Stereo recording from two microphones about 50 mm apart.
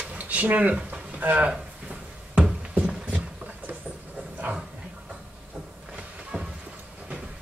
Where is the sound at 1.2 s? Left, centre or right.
Right.